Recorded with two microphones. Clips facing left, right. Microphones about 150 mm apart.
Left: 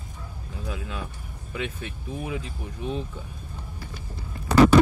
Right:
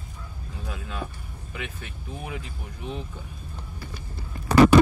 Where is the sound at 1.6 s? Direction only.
25° left (ahead or behind).